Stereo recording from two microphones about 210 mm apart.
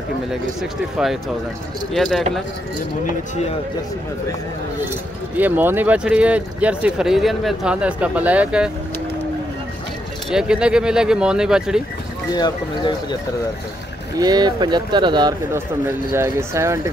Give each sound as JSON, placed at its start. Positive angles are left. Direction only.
{"t": 0.3, "sound": "speech", "side_deg": 0}
{"t": 5.4, "sound": "speech", "side_deg": -10}
{"t": 10.3, "sound": "speech", "side_deg": -5}
{"t": 12.4, "sound": "speech", "side_deg": 20}
{"t": 14.1, "sound": "speech", "side_deg": -20}